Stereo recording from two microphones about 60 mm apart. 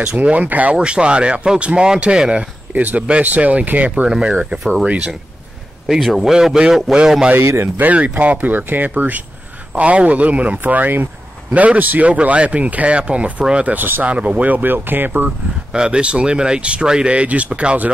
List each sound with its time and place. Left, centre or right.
0.0 s speech: centre
2.7 s speech: right
5.9 s speech: centre
6.3 s speech: centre
7.3 s speech: right
7.7 s speech: right
13.7 s speech: right
14.0 s speech: right
15.7 s speech: centre